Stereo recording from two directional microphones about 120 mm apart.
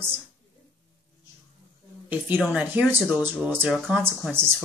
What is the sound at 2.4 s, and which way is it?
Speech, 5° right (ahead or behind).